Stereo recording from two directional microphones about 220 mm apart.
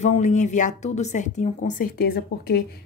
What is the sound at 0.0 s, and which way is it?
A woman's voice, 30° left (ahead or behind).